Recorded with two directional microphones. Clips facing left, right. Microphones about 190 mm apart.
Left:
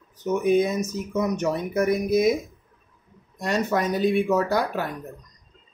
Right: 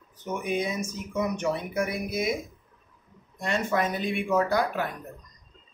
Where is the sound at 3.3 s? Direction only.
40° left (ahead or behind).